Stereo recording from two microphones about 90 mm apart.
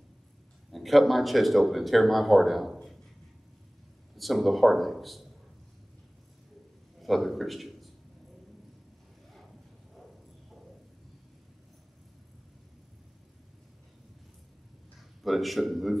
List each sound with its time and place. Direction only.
0.7 s speech: centre (ahead or behind)
4.2 s speech: centre (ahead or behind)
7.0 s a man's voice: centre (ahead or behind)
15.2 s speech: centre (ahead or behind)